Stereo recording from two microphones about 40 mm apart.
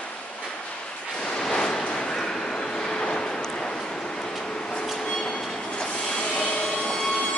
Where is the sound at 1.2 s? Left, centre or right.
Left.